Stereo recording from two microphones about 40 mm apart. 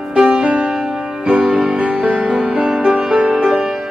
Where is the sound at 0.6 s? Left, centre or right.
Centre.